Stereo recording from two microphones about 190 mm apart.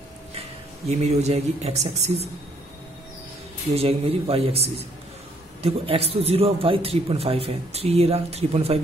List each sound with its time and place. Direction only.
0.3 s speech: 35° right (ahead or behind)
3.7 s a man's voice: 30° right (ahead or behind)